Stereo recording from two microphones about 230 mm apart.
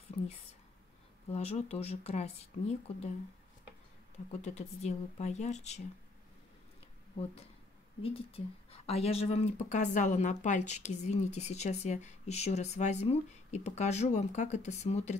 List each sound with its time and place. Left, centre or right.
0.1 s speech: left
1.3 s speech: left
4.4 s speech: left
8.0 s speech: left